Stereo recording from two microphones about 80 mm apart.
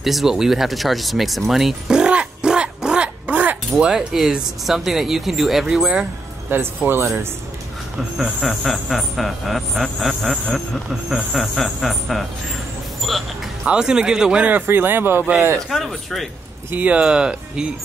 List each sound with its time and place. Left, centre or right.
0.0 s speech: centre
1.5 s music: centre
3.7 s speech: centre
6.5 s speech: right
8.2 s speech: centre
13.1 s music: centre
13.7 s speech: centre; by 15.2 s right
15.7 s speech: centre
16.7 s speech: centre